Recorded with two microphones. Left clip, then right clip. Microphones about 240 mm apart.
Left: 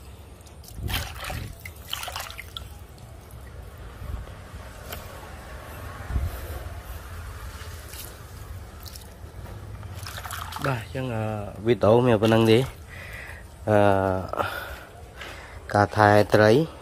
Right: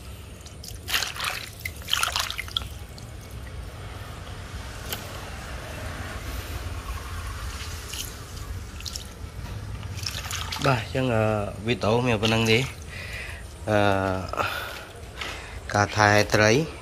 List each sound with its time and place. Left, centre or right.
1.9 s trickle: centre
10.0 s trickle: left
10.6 s speech: centre
11.6 s speech: left
13.0 s a sound: centre
15.6 s speech: left